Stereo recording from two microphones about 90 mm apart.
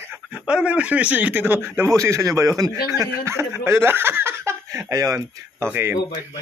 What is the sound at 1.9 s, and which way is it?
A man's voice, 35° right (ahead or behind).